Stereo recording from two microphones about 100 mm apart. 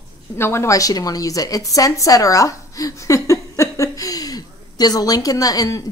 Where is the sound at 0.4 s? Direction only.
25° left (ahead or behind).